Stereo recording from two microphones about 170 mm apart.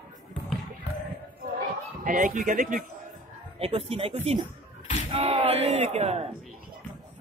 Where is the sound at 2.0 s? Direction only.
50° right (ahead or behind).